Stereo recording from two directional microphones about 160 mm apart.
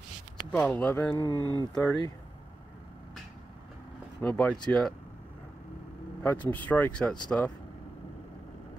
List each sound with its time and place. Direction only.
0.5 s speech: 10° left (ahead or behind)
1.1 s speech: 25° left (ahead or behind)
4.2 s speech: 10° left (ahead or behind)
6.2 s speech: 10° left (ahead or behind)